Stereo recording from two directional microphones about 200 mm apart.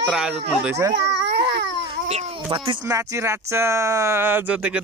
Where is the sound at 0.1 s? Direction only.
5° right (ahead or behind).